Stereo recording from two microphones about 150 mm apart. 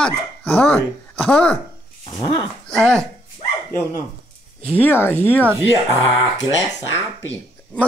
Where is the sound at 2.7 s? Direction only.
5° left (ahead or behind).